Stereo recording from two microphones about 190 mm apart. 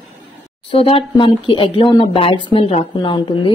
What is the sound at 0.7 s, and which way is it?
Speech, 30° left (ahead or behind).